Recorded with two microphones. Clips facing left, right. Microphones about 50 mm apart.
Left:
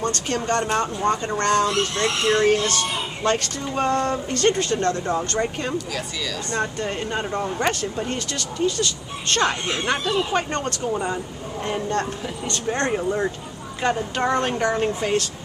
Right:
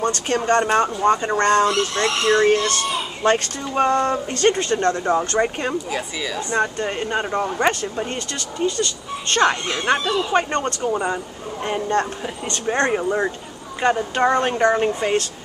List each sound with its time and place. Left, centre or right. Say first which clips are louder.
0.3 s speech: right 5 dB; right
1.7 s speech: right 2 dB; right
3.7 s speech: right 4 dB; centre